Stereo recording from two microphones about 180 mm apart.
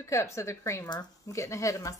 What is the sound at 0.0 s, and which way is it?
A woman's voice, 15° left (ahead or behind).